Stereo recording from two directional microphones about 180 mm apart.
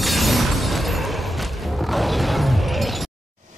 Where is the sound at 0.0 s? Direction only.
Centre (ahead or behind).